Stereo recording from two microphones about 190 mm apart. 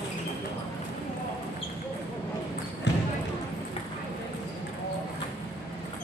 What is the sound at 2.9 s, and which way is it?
Basketball bounce, 65° left (ahead or behind).